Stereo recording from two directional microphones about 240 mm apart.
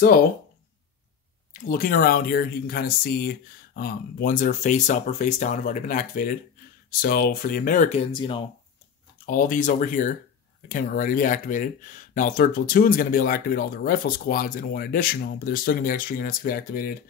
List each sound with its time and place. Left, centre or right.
1.6 s speech: left
9.2 s speech: left